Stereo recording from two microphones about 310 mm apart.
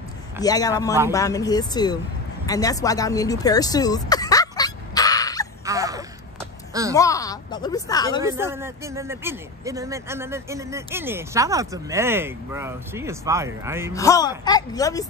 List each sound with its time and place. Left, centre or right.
0.4 s a woman's voice: centre
2.4 s a sound: centre
5.7 s a sound: centre
7.0 s a woman's voice: centre
8.2 s speech: centre
13.9 s a woman's voice: centre